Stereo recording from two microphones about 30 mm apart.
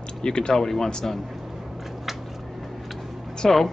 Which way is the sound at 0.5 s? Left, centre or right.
Centre.